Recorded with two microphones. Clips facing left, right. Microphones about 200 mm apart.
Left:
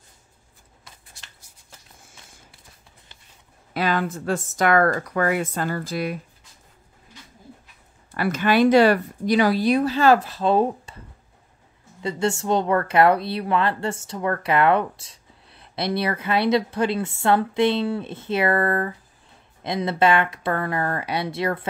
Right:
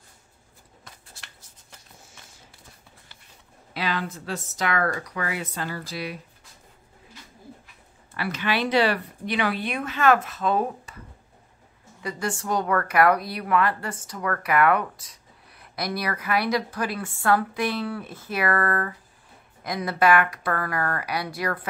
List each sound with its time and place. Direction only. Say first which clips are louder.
3.7 s speech: left 6 dB; 50° left (ahead or behind)
8.1 s speech: left 6 dB; 45° left (ahead or behind); by 11.0 s 30° left (ahead or behind)
12.0 s speech: left 6 dB; 25° left (ahead or behind)